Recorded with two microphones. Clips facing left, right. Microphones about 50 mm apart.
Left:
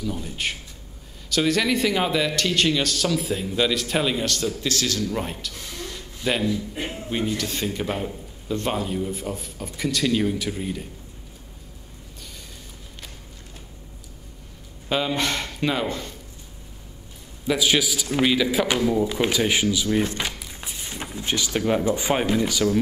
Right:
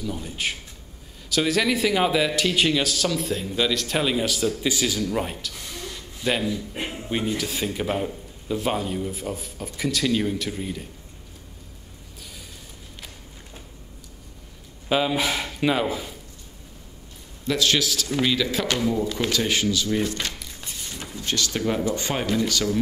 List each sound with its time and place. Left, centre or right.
0.0 s a man's voice: centre
14.9 s speech: centre
17.5 s a man's voice: centre